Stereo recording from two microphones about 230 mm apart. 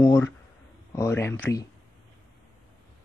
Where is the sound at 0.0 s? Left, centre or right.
Centre.